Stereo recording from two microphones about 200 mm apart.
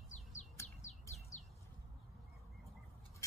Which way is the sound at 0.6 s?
15° left (ahead or behind).